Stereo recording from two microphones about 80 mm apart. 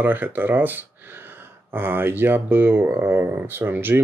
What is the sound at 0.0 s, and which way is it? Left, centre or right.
Speech, right.